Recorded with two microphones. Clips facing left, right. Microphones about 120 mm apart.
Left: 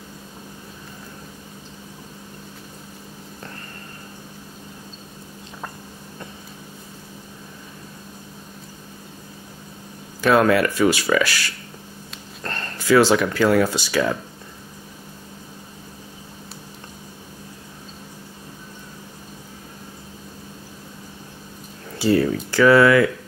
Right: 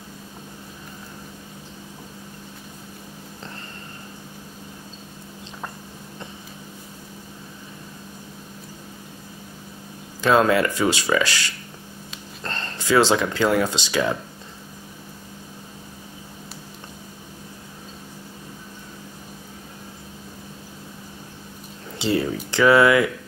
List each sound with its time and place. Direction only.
10.2 s speech: 25° right (ahead or behind)
21.9 s speech: 20° right (ahead or behind)